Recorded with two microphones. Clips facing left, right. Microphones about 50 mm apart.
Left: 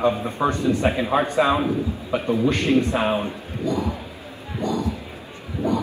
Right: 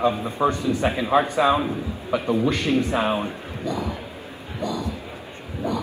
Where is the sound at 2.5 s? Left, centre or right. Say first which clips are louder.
Left 2 dB; left.